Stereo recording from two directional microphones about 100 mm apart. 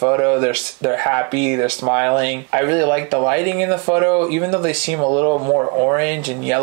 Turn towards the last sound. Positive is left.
turn(degrees=-15)  # may be behind; listen again after turning